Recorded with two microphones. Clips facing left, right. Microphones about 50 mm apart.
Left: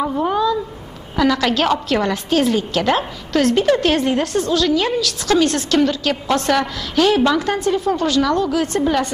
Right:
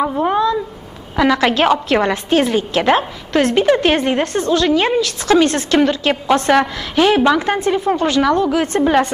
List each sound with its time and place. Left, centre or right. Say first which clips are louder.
0.2 s cat: right 2 dB; right
1.1 s a woman's voice: right 2 dB; right